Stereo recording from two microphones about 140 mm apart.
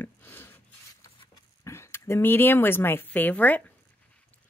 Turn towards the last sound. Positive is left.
turn(degrees=10)  # may be behind; listen again after turning